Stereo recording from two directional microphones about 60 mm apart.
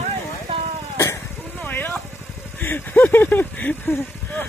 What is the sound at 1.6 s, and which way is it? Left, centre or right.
Vehicle, left.